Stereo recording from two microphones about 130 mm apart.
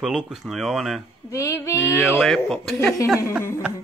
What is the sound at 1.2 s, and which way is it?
Female singing, 25° left (ahead or behind).